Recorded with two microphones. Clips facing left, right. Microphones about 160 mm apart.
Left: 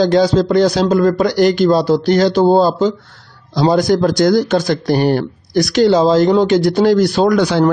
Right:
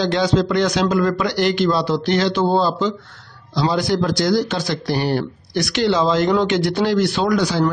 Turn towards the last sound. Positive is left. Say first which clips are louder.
# left 5 dB
turn(degrees=60)  # may be behind; listen again after turning